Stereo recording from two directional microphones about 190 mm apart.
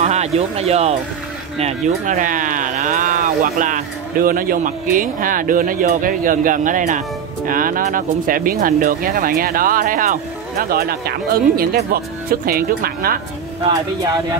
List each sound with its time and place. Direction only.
0.0 s speech: 35° right (ahead or behind)
2.0 s speech: 45° right (ahead or behind)